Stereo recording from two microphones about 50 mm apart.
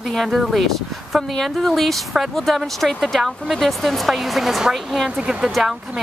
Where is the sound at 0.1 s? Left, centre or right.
Centre.